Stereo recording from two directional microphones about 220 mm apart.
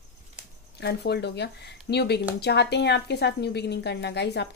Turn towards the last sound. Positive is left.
turn(degrees=50)  # may be behind; listen again after turning